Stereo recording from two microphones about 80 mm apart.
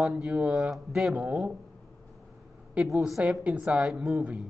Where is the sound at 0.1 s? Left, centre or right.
Centre.